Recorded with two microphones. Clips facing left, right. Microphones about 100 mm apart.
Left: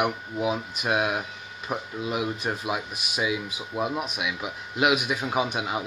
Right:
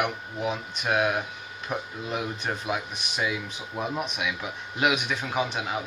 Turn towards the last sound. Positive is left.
turn(degrees=15)  # may be behind; listen again after turning